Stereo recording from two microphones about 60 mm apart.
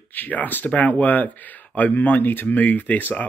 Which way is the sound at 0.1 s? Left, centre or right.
Left.